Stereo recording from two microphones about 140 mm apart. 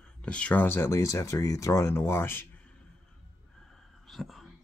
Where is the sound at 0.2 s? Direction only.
10° left (ahead or behind).